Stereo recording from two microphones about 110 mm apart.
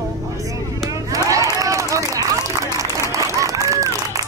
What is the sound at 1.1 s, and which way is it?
Run, 30° right (ahead or behind).